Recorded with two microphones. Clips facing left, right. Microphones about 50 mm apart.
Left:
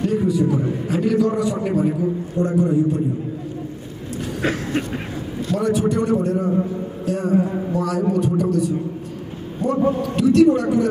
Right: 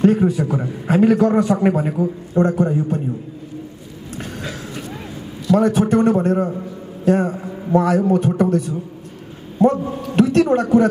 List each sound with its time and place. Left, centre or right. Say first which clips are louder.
0.0 s a man's voice: right 3 dB; right
4.4 s speech: left 7 dB; left
5.5 s a man's voice: right 5 dB; right